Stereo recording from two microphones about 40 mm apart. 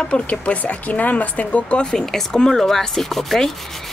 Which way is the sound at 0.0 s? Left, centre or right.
Left.